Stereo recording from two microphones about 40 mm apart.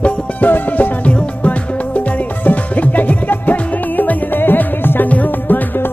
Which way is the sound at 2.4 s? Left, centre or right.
Left.